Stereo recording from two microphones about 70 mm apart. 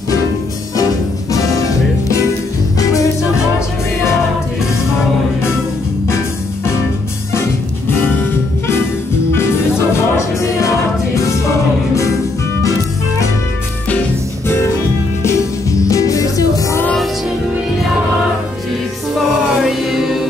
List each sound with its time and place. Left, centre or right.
2.8 s music: left
9.3 s music: left
15.9 s music: left
19.1 s music: centre